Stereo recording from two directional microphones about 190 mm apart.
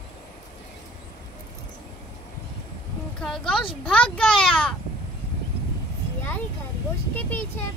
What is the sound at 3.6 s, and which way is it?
Speech, 25° left (ahead or behind).